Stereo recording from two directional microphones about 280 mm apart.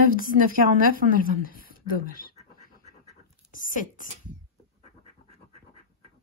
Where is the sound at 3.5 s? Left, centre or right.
Left.